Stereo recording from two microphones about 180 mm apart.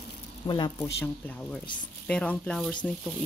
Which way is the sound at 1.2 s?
5° left (ahead or behind).